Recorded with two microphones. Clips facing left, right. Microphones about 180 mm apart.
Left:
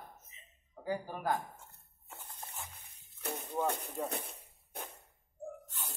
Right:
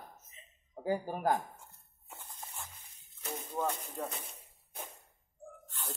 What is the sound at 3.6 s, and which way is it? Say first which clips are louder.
Speech: left 1 dB; 60° left (ahead or behind).